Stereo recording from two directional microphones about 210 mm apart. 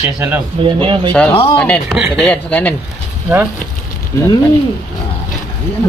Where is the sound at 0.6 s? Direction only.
25° right (ahead or behind).